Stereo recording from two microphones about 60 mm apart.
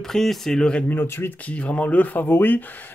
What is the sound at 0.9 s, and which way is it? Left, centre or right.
Speech, left.